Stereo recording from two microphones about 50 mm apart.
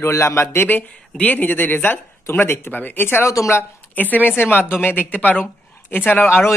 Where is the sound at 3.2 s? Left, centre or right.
Left.